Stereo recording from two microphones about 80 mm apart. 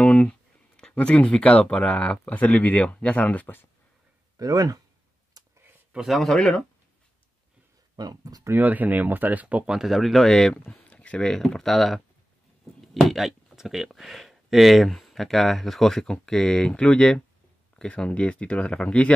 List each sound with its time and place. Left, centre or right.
0.0 s speech: centre
4.4 s speech: right
5.4 s a sound: right
5.9 s speech: centre
7.9 s speech: right
8.5 s speech: right; by 19.1 s centre